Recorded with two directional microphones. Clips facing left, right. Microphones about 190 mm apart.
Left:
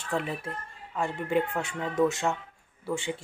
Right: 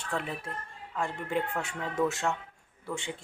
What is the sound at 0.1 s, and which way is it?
Speech, 20° left (ahead or behind).